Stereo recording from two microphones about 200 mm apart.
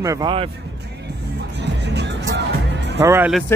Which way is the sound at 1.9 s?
60° right (ahead or behind).